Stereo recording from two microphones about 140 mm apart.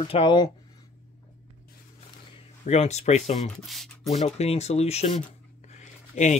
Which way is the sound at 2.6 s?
55° left (ahead or behind).